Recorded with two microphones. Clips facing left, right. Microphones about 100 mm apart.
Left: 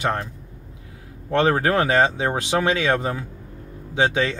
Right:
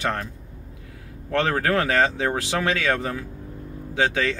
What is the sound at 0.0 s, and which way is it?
Speech, 20° left (ahead or behind).